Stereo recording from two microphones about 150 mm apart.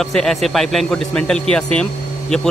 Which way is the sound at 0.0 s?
5° left (ahead or behind).